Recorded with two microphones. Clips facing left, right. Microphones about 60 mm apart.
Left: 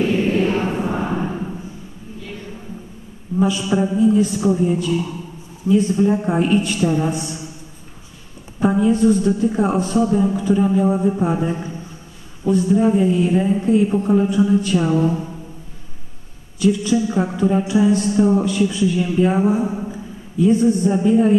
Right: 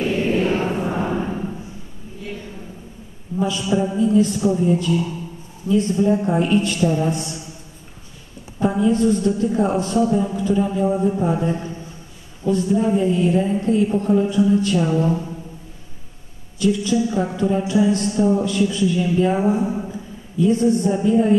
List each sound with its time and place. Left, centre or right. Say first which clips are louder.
0.7 s chant: left 1 dB; centre
3.3 s speech: left 2 dB; centre
8.5 s speech: left 2 dB; centre
16.6 s a man's voice: left 1 dB; centre